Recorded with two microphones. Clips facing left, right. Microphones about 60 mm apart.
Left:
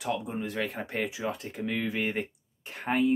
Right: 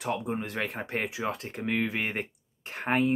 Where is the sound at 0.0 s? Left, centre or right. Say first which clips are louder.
Right 1 dB; right.